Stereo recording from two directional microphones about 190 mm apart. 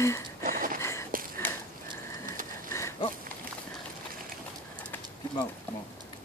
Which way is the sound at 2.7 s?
15° left (ahead or behind).